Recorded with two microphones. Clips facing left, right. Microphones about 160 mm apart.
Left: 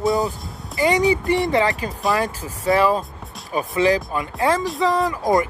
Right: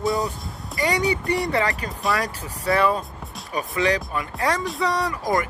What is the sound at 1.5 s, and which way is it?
Speech, 30° left (ahead or behind).